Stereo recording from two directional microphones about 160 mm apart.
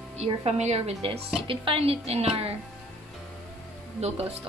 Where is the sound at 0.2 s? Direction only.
40° right (ahead or behind).